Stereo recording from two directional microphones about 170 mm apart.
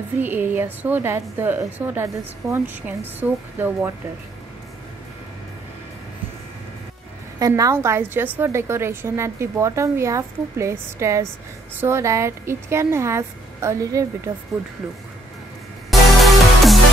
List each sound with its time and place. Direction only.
0.2 s a woman's voice: 10° right (ahead or behind)
7.3 s a woman's voice: 20° right (ahead or behind)
15.9 s music: centre (ahead or behind)